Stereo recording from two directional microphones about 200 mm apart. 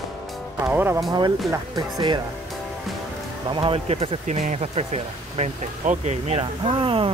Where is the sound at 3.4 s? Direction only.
25° right (ahead or behind).